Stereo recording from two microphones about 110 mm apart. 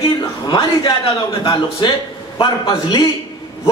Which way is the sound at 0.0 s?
40° left (ahead or behind).